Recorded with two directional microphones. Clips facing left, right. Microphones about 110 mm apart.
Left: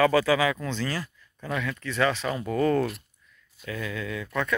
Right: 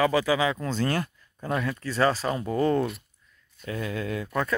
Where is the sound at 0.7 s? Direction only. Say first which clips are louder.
Right 4 dB; 50° right (ahead or behind).